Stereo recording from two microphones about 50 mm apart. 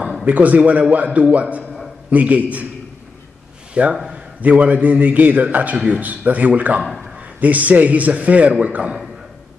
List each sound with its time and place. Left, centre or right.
0.2 s a man's voice: right
3.8 s a man's voice: right
6.8 s a man's voice: centre
7.2 s a man's voice: right